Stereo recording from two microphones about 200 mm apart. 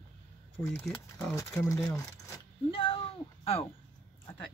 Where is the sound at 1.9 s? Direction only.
20° left (ahead or behind).